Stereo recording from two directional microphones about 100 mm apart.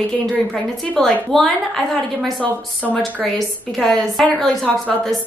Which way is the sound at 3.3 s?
Centre (ahead or behind).